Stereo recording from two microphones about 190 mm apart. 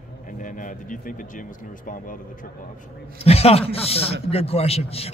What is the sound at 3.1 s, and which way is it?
A man's voice, 30° left (ahead or behind).